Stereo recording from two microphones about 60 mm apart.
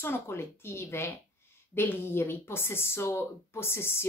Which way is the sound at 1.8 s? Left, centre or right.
Left.